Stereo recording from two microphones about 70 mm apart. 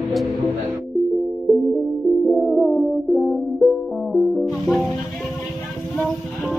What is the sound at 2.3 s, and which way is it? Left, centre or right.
Music, centre.